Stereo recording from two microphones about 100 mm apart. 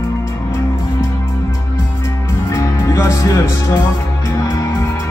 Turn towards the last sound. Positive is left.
turn(degrees=25)  # may be behind; listen again after turning